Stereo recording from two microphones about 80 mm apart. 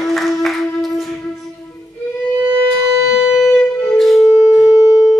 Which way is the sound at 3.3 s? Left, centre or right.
Centre.